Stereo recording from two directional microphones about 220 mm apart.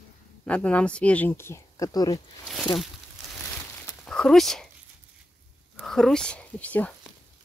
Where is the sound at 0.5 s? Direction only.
5° left (ahead or behind).